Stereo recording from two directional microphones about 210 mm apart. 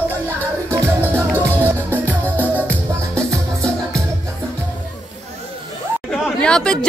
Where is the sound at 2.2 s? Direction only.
10° left (ahead or behind).